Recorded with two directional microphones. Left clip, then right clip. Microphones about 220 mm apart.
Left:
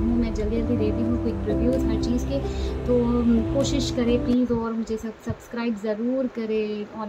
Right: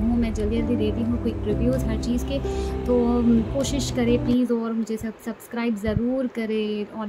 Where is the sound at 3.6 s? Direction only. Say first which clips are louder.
Left 1 dB; 20° right (ahead or behind).